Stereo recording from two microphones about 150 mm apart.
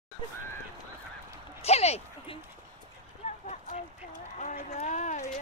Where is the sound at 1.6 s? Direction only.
45° left (ahead or behind).